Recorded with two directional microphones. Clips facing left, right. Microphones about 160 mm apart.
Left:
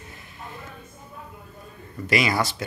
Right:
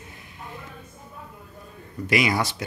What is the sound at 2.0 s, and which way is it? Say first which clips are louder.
Speech: even; 15° right (ahead or behind).